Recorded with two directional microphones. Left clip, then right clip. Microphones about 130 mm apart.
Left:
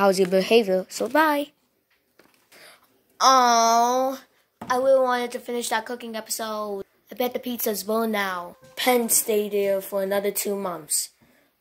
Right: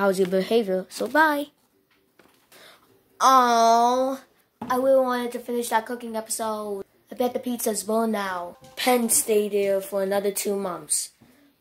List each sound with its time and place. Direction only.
0.0 s speech: 25° left (ahead or behind)
2.6 s speech: 30° left (ahead or behind); by 8.5 s 50° left (ahead or behind)
8.7 s a woman's voice: 30° left (ahead or behind)